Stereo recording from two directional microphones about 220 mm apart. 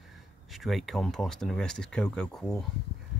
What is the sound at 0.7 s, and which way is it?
Speech, centre (ahead or behind).